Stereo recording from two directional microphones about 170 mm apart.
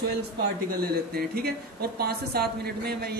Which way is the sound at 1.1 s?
65° right (ahead or behind).